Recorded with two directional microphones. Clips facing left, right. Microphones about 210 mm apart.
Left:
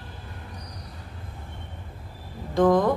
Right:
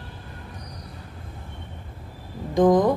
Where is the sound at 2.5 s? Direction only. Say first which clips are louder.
Right 2 dB; 15° right (ahead or behind).